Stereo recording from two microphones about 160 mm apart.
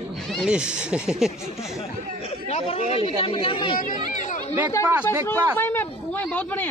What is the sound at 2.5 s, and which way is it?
Speech, 40° left (ahead or behind).